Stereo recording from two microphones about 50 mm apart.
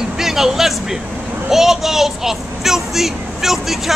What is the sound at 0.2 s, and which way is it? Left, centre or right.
A child's voice, centre.